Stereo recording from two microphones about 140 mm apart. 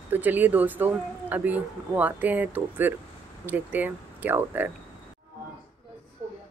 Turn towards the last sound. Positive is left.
turn(degrees=-15)  # may be behind; listen again after turning